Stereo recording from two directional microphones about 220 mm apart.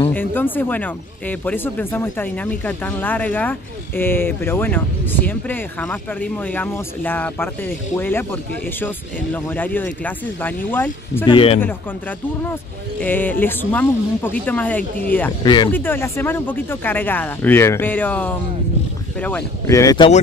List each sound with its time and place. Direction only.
0.1 s speech: 10° left (ahead or behind)
11.2 s speech: 25° left (ahead or behind)
13.0 s speech: 10° left (ahead or behind)
15.4 s speech: 20° left (ahead or behind)
15.7 s speech: 10° left (ahead or behind)